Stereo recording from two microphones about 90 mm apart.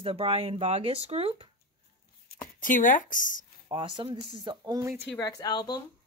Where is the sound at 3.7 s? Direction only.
70° right (ahead or behind).